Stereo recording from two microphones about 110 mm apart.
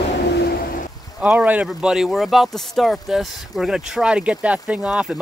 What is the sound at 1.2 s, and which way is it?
Speech, 15° right (ahead or behind).